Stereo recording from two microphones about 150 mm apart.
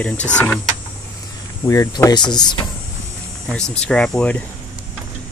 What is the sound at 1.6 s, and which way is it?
Speech, 20° left (ahead or behind).